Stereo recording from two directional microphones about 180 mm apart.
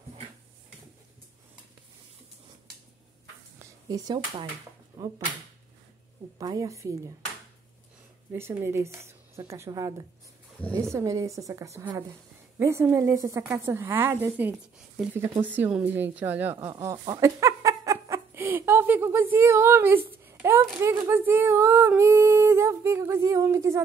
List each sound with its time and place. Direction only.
3.5 s a sound: 20° right (ahead or behind)
5.0 s speech: 20° right (ahead or behind)
6.3 s speech: 20° right (ahead or behind)
8.3 s speech: 15° right (ahead or behind)